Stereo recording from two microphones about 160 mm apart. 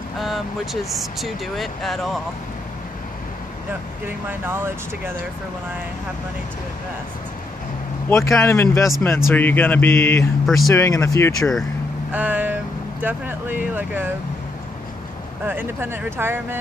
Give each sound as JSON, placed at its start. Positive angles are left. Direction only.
{"t": 0.9, "sound": "speech", "side_deg": 0}
{"t": 4.3, "sound": "speech", "side_deg": -15}
{"t": 8.1, "sound": "speech", "side_deg": 20}
{"t": 10.4, "sound": "speech", "side_deg": 0}
{"t": 10.7, "sound": "speech", "side_deg": 20}
{"t": 11.3, "sound": "speech", "side_deg": 5}
{"t": 12.1, "sound": "vehicle", "side_deg": -10}
{"t": 13.0, "sound": "speech", "side_deg": -10}
{"t": 15.4, "sound": "speech", "side_deg": -15}